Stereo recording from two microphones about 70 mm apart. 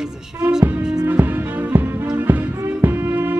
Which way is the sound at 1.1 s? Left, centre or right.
Right.